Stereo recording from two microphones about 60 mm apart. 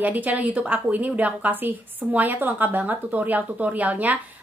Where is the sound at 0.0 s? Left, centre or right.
Right.